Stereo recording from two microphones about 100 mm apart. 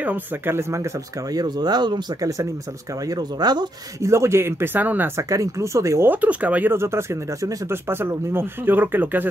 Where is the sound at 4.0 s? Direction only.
30° right (ahead or behind).